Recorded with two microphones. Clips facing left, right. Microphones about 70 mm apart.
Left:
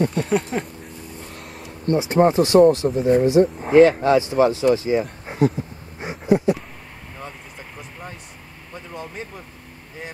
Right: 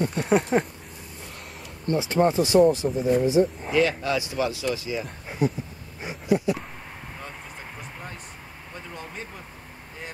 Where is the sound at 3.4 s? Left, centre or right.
Left.